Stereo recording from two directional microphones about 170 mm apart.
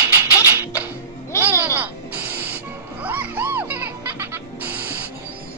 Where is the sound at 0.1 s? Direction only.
15° right (ahead or behind).